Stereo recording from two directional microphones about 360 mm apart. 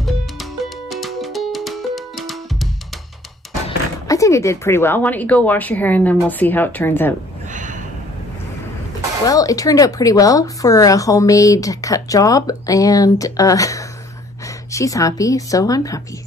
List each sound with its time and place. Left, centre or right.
0.0 s music: centre
3.6 s speech: centre
7.4 s a sound: right
9.2 s speech: centre